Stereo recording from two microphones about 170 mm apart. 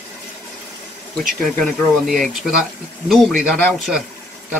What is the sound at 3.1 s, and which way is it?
Speech, centre (ahead or behind).